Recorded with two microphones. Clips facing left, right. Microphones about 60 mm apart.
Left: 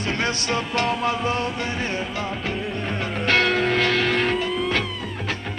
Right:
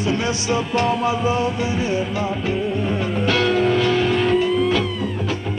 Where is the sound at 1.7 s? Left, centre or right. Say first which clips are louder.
Right 5 dB; left.